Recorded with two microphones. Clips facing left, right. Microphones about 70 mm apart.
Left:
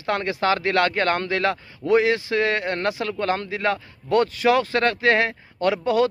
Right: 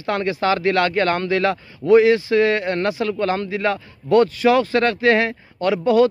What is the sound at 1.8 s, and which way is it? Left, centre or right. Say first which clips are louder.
Speech: right 6 dB; centre.